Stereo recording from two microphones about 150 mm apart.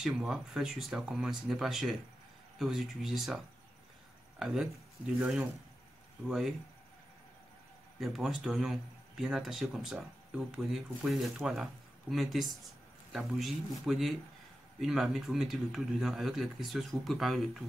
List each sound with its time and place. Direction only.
0.0 s a man's voice: 5° right (ahead or behind)
4.4 s a man's voice: 5° right (ahead or behind)
8.0 s a man's voice: 5° right (ahead or behind)